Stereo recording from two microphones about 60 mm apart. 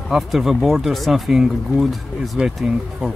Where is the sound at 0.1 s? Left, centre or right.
Centre.